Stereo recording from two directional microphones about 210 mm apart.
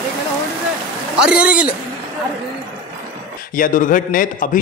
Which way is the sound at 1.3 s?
5° right (ahead or behind).